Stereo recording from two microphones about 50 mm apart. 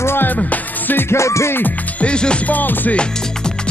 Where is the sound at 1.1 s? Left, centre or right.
Left.